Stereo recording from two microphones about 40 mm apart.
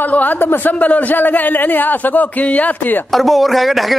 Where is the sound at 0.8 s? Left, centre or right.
Left.